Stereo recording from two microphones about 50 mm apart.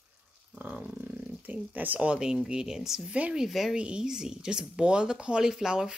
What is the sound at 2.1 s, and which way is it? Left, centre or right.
Speech, centre.